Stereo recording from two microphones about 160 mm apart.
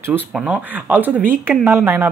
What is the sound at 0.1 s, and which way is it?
Speech, 10° right (ahead or behind).